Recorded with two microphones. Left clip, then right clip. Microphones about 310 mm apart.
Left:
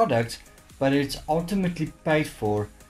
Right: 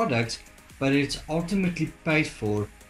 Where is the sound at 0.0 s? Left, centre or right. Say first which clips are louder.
Left 3 dB; left.